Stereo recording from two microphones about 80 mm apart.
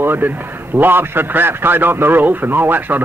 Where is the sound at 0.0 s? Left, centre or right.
Right.